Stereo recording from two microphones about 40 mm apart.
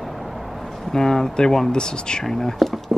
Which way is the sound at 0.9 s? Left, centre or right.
Centre.